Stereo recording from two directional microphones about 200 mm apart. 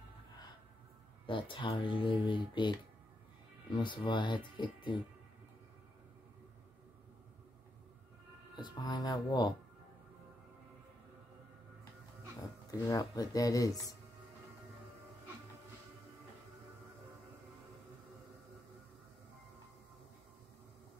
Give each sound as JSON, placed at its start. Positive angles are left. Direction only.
{"t": 1.2, "sound": "speech", "side_deg": 25}
{"t": 3.7, "sound": "speech", "side_deg": 25}
{"t": 8.5, "sound": "speech", "side_deg": 20}
{"t": 12.8, "sound": "speech", "side_deg": 20}